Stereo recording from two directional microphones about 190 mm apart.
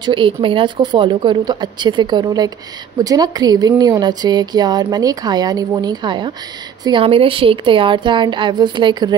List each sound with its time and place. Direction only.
0.0 s speech: 25° right (ahead or behind)